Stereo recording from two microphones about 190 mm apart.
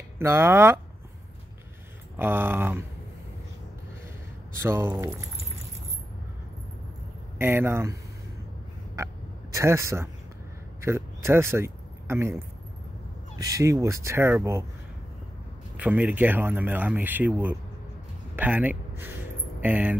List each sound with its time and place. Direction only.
0.2 s speech: 15° right (ahead or behind)
2.1 s speech: 10° right (ahead or behind)
4.6 s speech: 15° right (ahead or behind)
7.3 s speech: 15° right (ahead or behind)
8.9 s fowl: 15° right (ahead or behind)
10.8 s a sound: 15° right (ahead or behind)
13.4 s speech: 15° right (ahead or behind)
15.8 s speech: 10° right (ahead or behind)